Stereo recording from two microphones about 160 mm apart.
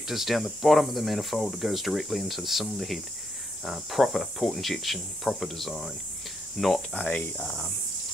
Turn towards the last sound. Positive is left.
turn(degrees=10)  # may be behind; listen again after turning